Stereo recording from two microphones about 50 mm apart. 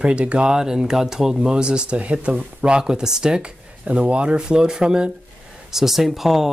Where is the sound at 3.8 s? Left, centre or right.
Right.